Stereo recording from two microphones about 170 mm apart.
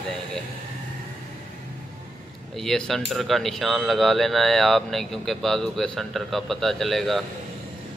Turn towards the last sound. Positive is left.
turn(degrees=0)  # may be behind; listen again after turning